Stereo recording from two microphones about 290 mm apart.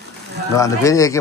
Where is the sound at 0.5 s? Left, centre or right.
Centre.